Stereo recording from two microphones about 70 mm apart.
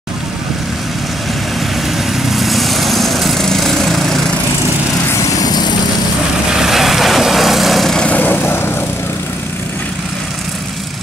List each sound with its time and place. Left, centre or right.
2.1 s lawn mower: centre
5.3 s vehicle: left
6.5 s vehicle: centre
8.0 s vehicle: left